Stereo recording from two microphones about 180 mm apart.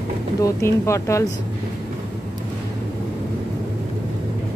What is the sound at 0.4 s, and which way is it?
Speech, 15° left (ahead or behind).